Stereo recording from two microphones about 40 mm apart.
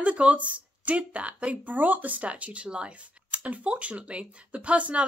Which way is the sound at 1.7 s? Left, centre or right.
Right.